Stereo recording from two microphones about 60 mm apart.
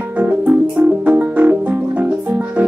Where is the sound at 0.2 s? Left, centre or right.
Right.